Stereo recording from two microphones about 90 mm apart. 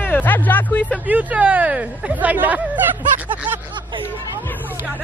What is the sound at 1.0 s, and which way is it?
Speech, 15° right (ahead or behind).